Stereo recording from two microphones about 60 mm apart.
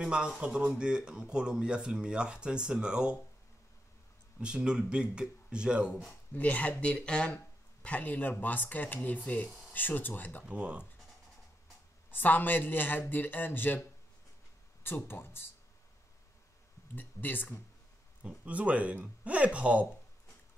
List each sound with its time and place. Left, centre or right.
0.0 s speech: centre
4.4 s speech: centre
6.3 s speech: left
7.8 s speech: left
10.5 s speech: right
12.1 s speech: left
16.9 s speech: left
18.2 s speech: right